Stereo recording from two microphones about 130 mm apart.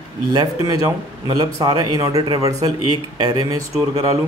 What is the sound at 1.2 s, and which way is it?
Speech, 30° right (ahead or behind).